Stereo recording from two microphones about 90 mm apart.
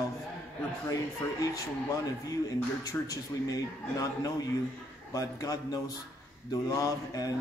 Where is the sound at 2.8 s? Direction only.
40° left (ahead or behind).